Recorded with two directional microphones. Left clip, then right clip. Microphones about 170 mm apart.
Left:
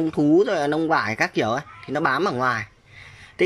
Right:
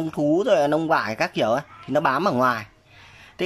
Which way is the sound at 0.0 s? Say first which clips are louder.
Left 3 dB; 10° right (ahead or behind).